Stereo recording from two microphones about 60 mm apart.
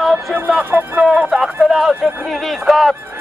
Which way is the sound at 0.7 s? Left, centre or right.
Right.